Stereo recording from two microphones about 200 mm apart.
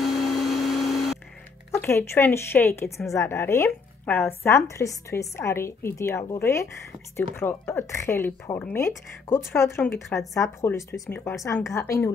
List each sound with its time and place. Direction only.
0.0 s vacuum cleaner: centre (ahead or behind)
1.7 s a woman's voice: 10° left (ahead or behind)